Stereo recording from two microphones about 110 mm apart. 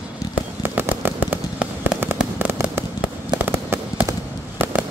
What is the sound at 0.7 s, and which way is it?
Fireworks, 20° right (ahead or behind).